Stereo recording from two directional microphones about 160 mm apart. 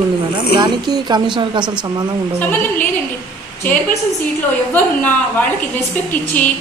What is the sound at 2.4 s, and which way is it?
A woman's voice, 10° left (ahead or behind).